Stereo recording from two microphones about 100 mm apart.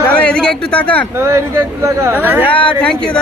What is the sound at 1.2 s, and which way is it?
Speech, 25° right (ahead or behind).